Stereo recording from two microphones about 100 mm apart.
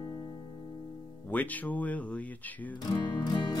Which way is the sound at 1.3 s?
15° left (ahead or behind).